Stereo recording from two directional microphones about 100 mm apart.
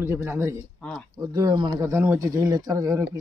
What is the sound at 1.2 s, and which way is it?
Speech, 40° right (ahead or behind).